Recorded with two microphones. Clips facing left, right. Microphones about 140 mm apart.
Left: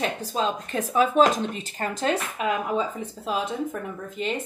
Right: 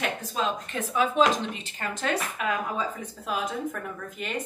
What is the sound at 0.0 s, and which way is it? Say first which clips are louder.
A woman's voice: left 3 dB; 35° left (ahead or behind).